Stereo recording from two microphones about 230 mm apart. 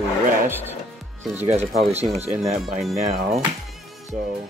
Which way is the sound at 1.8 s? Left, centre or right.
Right.